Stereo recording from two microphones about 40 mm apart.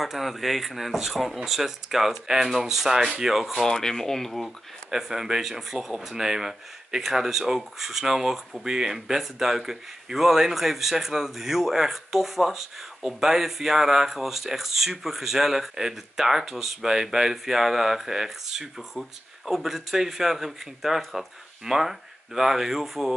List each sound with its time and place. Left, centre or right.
0.0 s a man's voice: centre
3.0 s speech: right
3.3 s a man's voice: centre
3.6 s speech: centre
4.9 s a man's voice: centre